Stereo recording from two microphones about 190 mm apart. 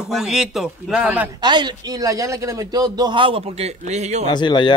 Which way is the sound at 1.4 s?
25° right (ahead or behind).